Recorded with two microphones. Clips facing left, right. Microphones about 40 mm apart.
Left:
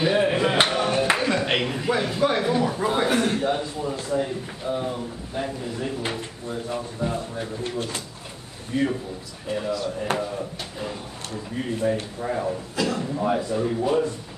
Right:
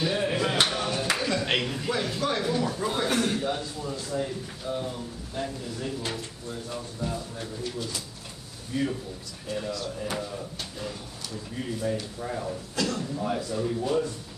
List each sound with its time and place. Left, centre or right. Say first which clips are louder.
0.0 s a sound: left 6 dB; left
7.6 s speech: left 5 dB; left
9.5 s a man's voice: left 6 dB; centre
13.0 s speech: left 6 dB; left